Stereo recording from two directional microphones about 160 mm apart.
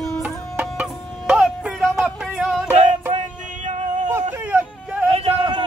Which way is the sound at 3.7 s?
50° right (ahead or behind).